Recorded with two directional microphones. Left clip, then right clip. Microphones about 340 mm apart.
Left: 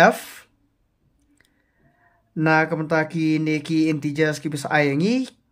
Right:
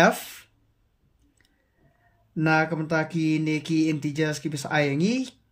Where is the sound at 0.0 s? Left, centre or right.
Centre.